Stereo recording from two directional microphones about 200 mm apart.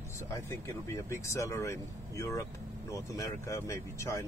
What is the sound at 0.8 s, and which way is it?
Speech, 15° left (ahead or behind).